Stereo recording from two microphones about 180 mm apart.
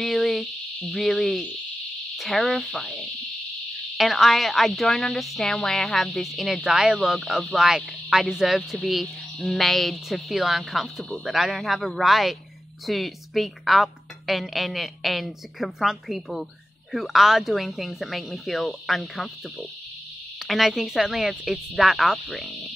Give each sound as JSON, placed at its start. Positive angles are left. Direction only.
{"t": 0.0, "sound": "cricket", "side_deg": 0}
{"t": 0.9, "sound": "speech", "side_deg": 5}
{"t": 3.9, "sound": "speech", "side_deg": 0}
{"t": 20.4, "sound": "speech", "side_deg": 0}